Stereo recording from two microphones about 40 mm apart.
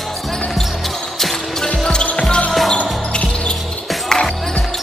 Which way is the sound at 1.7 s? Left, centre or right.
Left.